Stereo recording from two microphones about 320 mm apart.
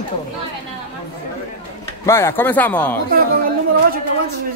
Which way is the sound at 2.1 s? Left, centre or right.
Centre.